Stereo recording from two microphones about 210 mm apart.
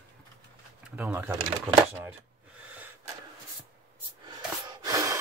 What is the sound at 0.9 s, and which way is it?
Speech, 10° right (ahead or behind).